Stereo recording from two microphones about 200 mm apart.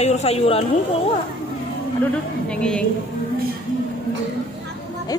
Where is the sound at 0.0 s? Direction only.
30° left (ahead or behind).